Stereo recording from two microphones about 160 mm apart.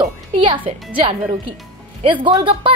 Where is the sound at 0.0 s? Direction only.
35° right (ahead or behind).